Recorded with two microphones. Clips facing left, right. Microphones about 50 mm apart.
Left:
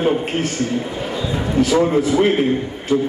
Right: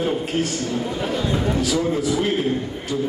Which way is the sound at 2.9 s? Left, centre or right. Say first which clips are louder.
Left 7 dB; left.